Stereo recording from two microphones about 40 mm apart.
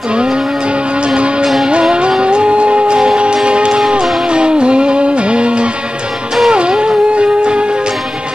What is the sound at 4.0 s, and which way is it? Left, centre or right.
Music, centre.